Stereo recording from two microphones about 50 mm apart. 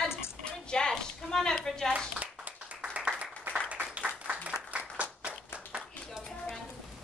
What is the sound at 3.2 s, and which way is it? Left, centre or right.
Applause, right.